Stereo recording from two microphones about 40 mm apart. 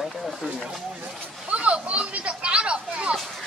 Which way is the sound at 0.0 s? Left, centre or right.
Centre.